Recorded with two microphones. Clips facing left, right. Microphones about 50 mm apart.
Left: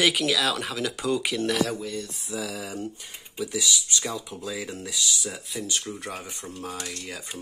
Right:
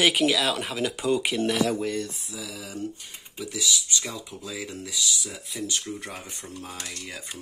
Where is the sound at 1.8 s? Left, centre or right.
Right.